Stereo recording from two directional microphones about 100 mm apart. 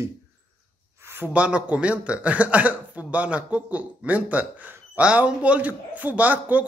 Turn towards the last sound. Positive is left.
turn(degrees=-15)  # may be behind; listen again after turning